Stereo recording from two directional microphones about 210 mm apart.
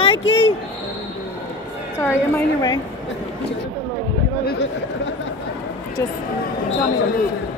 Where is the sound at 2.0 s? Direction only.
15° left (ahead or behind).